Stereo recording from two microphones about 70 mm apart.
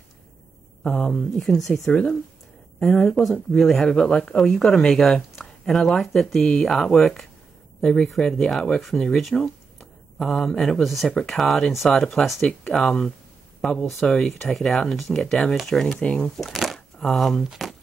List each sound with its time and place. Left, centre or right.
0.9 s speech: centre
1.9 s speech: centre
16.3 s speech: centre